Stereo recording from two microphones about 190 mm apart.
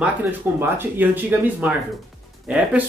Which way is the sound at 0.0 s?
10° right (ahead or behind).